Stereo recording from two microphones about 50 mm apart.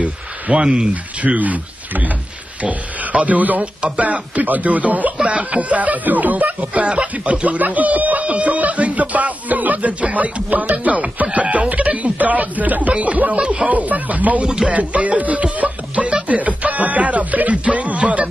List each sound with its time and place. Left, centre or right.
0.0 s speech: right
1.2 s speech: right
14.7 s music: right